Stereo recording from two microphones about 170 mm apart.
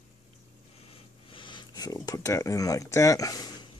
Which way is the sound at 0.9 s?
30° left (ahead or behind).